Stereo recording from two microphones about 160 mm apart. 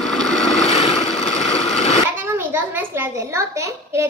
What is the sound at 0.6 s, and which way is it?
Boat, 45° left (ahead or behind).